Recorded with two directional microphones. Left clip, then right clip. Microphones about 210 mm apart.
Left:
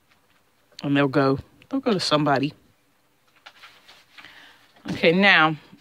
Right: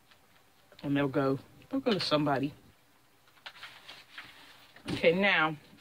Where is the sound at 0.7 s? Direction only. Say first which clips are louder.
Left 9 dB; 45° left (ahead or behind).